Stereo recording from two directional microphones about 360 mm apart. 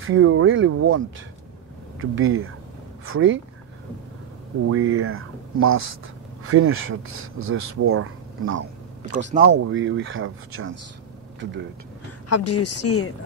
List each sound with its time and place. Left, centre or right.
0.0 s speech: right
4.6 s speech: right
12.3 s speech: left